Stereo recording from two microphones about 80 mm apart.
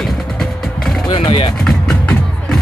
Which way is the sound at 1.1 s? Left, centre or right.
Left.